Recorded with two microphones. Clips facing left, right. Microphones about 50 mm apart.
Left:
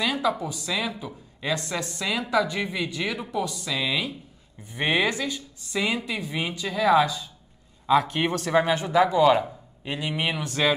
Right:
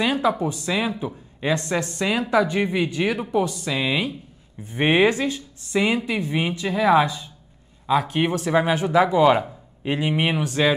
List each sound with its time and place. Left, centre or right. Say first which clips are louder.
0.0 s speech: right 4 dB; right
7.8 s a man's voice: even; centre
8.2 s speech: right 2 dB; right
10.4 s speech: right 4 dB; centre